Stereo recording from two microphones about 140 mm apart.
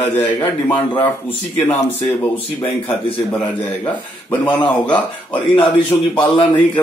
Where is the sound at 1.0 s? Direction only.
15° left (ahead or behind).